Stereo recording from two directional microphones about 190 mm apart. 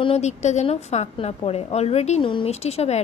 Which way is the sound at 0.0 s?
35° left (ahead or behind).